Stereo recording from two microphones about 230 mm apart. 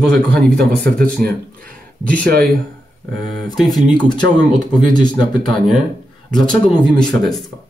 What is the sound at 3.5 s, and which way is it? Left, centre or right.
Speech, centre.